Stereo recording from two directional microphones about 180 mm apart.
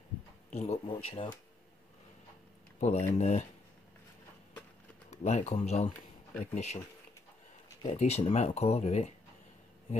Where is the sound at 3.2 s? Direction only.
40° left (ahead or behind).